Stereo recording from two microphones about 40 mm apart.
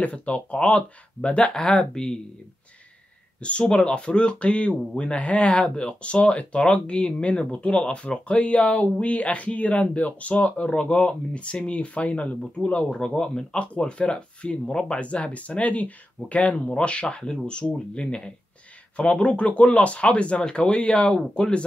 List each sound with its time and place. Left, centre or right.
0.0 s speech: left
3.3 s speech: left